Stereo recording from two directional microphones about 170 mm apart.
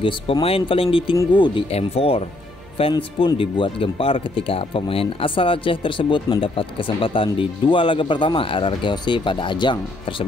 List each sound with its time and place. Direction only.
0.0 s speech: 35° left (ahead or behind)